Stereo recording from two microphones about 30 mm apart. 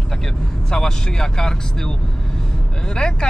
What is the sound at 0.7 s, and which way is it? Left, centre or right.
Speech, centre.